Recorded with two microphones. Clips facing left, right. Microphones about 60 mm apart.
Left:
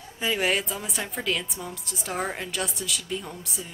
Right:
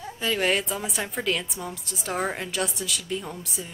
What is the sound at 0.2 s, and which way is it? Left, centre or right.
Speech, centre.